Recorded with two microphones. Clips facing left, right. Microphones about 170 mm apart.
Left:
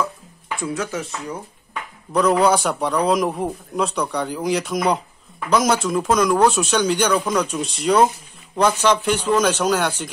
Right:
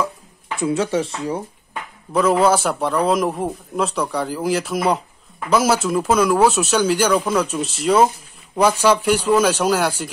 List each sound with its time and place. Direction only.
0.6 s speech: 25° right (ahead or behind)
2.1 s a man's voice: centre (ahead or behind)